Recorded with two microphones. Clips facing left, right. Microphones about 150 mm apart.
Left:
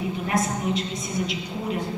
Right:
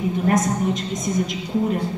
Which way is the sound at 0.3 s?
45° right (ahead or behind).